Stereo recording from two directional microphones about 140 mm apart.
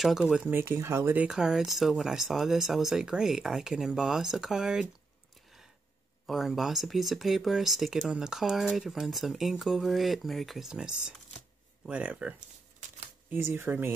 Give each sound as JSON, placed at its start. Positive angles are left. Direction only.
{"t": 0.0, "sound": "speech", "side_deg": -5}
{"t": 0.6, "sound": "speech", "side_deg": -15}
{"t": 6.2, "sound": "speech", "side_deg": 0}